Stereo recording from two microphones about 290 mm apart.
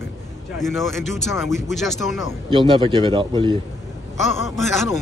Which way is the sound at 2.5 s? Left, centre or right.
Centre.